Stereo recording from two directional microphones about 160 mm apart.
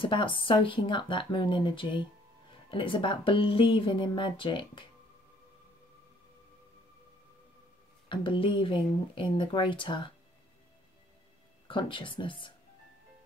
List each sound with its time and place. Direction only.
0.0 s speech: 30° left (ahead or behind)
8.1 s speech: 30° left (ahead or behind)
11.6 s speech: 30° left (ahead or behind)